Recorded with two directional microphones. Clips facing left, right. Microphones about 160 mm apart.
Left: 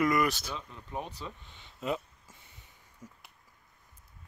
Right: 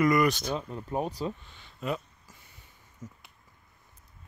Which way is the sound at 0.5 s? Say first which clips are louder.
Right 8 dB; 40° right (ahead or behind).